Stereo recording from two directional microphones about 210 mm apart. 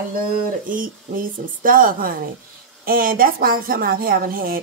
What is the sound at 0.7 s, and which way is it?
A woman's voice, 40° right (ahead or behind).